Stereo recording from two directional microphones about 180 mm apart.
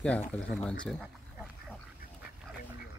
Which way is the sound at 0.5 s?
5° left (ahead or behind).